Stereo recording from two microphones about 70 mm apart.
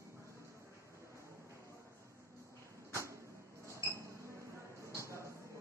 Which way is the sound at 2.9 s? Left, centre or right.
Right.